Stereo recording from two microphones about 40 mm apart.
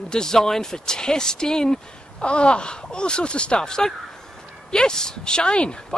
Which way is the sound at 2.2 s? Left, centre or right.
Left.